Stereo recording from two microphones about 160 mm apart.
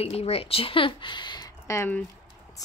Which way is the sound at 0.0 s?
40° left (ahead or behind).